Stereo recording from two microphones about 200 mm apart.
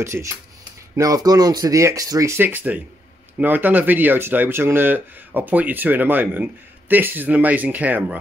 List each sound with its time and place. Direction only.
0.0 s speech: 15° right (ahead or behind)